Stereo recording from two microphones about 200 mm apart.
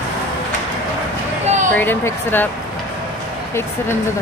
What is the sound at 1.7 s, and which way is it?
Speech, 10° left (ahead or behind).